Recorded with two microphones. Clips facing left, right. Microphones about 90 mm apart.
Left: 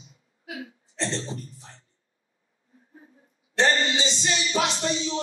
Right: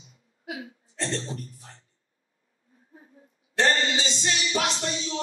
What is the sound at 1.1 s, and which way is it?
Speech, 20° left (ahead or behind).